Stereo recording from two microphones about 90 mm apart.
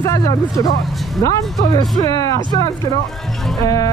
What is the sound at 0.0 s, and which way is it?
Speech, 40° left (ahead or behind).